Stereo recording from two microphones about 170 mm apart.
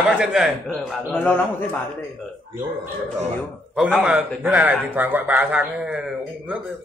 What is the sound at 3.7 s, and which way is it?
A man's voice, 5° right (ahead or behind).